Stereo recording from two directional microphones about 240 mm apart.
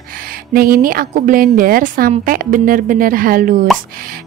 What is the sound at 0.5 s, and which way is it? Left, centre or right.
A woman's voice, right.